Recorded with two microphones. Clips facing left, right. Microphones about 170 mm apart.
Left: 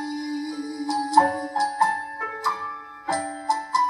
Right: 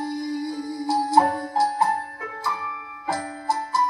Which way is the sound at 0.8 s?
10° right (ahead or behind).